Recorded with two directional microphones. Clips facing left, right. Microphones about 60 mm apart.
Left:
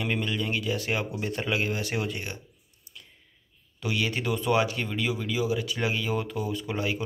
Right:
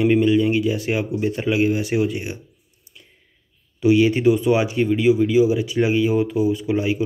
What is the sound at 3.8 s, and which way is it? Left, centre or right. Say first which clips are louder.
Speech: right 14 dB; right.